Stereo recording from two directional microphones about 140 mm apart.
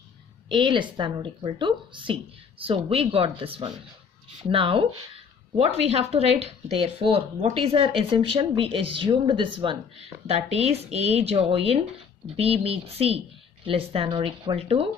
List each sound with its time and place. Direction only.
0.5 s a woman's voice: 35° right (ahead or behind)